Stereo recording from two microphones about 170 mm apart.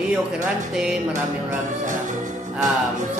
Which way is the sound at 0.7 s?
5° right (ahead or behind).